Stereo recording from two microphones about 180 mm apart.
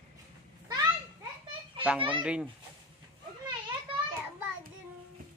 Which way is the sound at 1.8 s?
10° right (ahead or behind).